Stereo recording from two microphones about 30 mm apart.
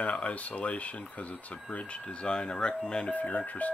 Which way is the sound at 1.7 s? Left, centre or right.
Left.